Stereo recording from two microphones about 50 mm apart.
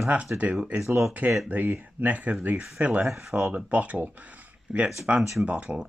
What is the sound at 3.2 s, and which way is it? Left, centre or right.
Speech, centre.